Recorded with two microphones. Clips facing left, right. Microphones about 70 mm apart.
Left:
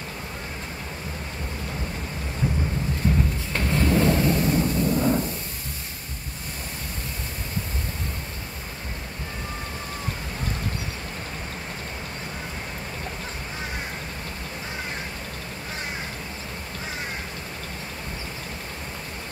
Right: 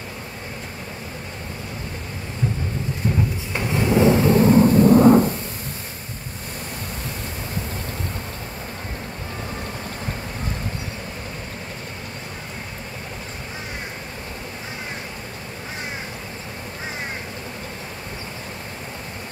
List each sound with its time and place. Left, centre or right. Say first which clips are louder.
3.0 s clip-clop: even; centre
3.5 s vehicle: right 3 dB; centre; by 4.5 s right
4.5 s thunder: right 9 dB; right